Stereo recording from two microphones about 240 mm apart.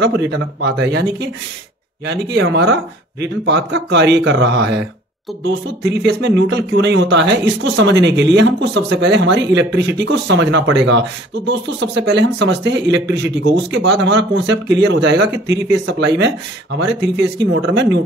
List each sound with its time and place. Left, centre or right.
0.0 s speech: right
6.0 s speech: right